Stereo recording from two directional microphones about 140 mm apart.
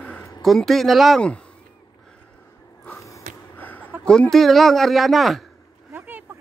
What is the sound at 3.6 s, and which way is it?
Speech, 10° left (ahead or behind).